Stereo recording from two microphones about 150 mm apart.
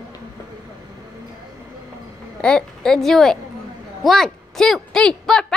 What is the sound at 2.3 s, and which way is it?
A woman's voice, 5° left (ahead or behind).